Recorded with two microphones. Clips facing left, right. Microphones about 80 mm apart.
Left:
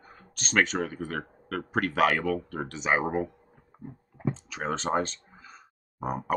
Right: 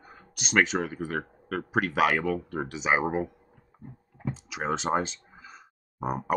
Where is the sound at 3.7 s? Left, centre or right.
Centre.